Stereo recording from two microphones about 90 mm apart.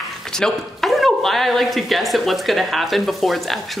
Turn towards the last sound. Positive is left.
turn(degrees=0)  # may be behind; listen again after turning